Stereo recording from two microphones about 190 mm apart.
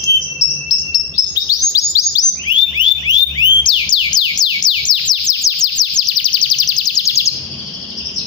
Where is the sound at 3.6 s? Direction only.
25° left (ahead or behind).